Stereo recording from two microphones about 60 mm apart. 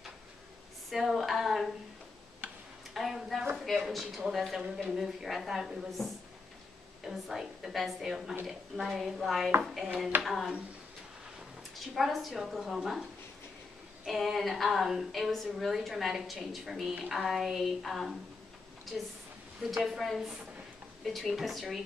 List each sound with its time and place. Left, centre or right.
0.8 s a woman's voice: centre
2.9 s a sound: centre
3.5 s a woman's voice: centre
11.9 s a woman's voice: centre
14.0 s a woman's voice: centre